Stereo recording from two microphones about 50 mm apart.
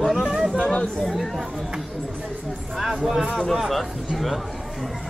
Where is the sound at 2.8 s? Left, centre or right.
Centre.